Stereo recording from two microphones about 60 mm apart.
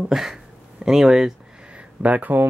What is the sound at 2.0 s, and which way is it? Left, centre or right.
Speech, right.